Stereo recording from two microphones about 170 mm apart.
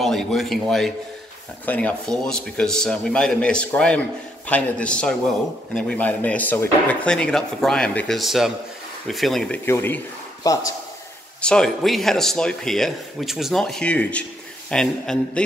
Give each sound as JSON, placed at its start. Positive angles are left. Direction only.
{"t": 0.0, "sound": "a man's voice", "side_deg": 0}
{"t": 9.7, "sound": "speech", "side_deg": 10}
{"t": 11.4, "sound": "a man's voice", "side_deg": 5}